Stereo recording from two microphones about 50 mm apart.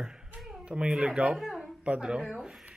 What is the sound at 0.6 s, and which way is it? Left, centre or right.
Speech, centre.